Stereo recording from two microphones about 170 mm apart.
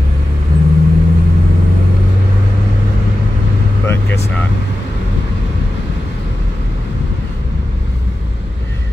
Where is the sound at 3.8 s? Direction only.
15° left (ahead or behind).